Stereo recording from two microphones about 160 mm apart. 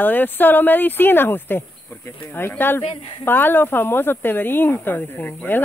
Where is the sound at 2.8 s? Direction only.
35° left (ahead or behind).